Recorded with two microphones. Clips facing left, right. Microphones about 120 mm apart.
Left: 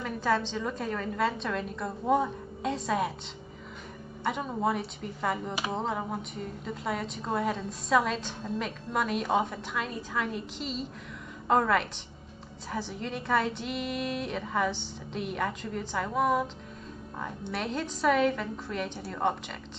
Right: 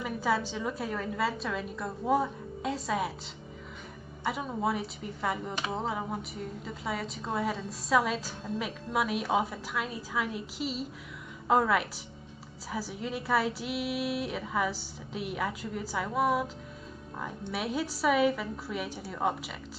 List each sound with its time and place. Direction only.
0.0 s speech: 10° right (ahead or behind)
4.2 s speech: centre (ahead or behind)